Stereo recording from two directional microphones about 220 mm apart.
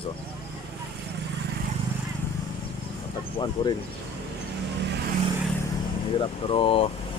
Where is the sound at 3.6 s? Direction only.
25° left (ahead or behind).